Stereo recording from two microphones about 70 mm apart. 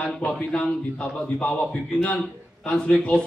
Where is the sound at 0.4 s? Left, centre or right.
Centre.